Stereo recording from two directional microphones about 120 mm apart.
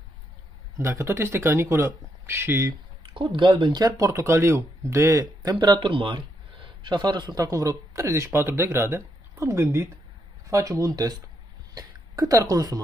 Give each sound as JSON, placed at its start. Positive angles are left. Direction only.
{"t": 0.7, "sound": "speech", "side_deg": -20}
{"t": 3.2, "sound": "speech", "side_deg": -45}